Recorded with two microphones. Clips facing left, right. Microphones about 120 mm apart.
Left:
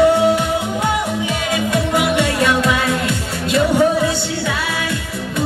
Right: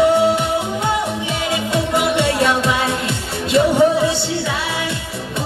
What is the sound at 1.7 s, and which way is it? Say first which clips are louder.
Music: even; 25° right (ahead or behind).